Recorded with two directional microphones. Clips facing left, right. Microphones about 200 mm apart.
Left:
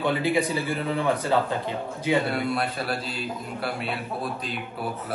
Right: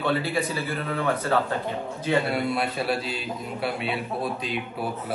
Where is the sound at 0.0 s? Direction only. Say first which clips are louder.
Left 2 dB; 15° left (ahead or behind).